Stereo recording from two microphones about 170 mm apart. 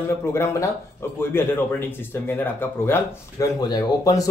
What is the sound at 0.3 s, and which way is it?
Speech, 15° left (ahead or behind).